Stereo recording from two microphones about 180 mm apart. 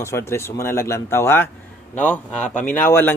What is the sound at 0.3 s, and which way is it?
Speech, 15° left (ahead or behind).